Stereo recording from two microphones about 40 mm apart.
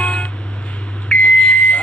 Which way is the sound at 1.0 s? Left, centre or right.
Left.